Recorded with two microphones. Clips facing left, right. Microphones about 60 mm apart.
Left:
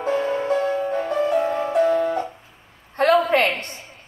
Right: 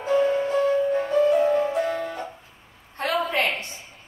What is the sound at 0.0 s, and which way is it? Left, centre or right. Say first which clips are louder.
Music: right 1 dB; left.